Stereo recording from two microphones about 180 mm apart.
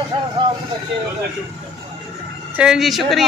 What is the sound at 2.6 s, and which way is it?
Speech, 5° right (ahead or behind).